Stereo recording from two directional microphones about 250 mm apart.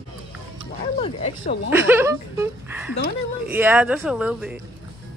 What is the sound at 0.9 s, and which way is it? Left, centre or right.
Speech, left.